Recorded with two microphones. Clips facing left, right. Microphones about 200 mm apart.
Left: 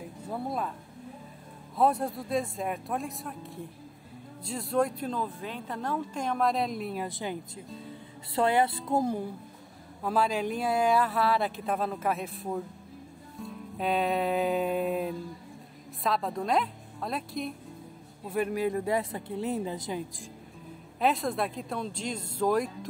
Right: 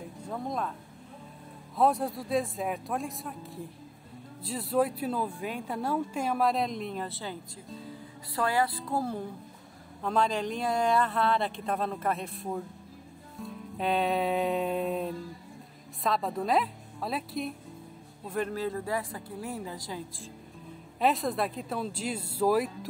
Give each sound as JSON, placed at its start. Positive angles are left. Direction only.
{"t": 0.3, "sound": "speech", "side_deg": 5}
{"t": 1.8, "sound": "speech", "side_deg": 0}
{"t": 8.4, "sound": "a woman's voice", "side_deg": 25}
{"t": 21.0, "sound": "speech", "side_deg": 0}